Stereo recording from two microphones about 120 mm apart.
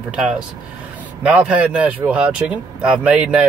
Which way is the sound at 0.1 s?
5° right (ahead or behind).